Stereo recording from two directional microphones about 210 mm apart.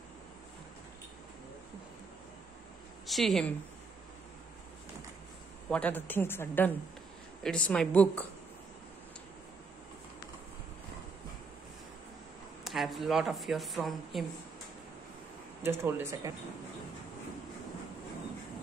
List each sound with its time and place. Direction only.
3.1 s speech: centre (ahead or behind)
5.7 s speech: 5° left (ahead or behind)
12.6 s speech: centre (ahead or behind)
15.6 s speech: 10° right (ahead or behind)